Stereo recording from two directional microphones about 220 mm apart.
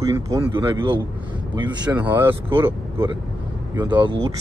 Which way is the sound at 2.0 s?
10° right (ahead or behind).